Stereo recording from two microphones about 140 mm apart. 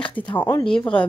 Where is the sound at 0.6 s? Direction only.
5° left (ahead or behind).